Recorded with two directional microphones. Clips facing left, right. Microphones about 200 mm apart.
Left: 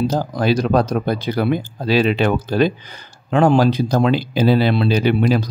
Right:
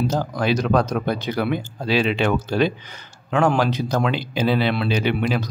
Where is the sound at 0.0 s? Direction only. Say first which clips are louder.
Left 3 dB; 35° left (ahead or behind).